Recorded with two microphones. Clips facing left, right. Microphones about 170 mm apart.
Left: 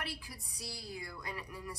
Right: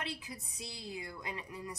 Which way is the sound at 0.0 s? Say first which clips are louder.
Right 2 dB; 20° right (ahead or behind).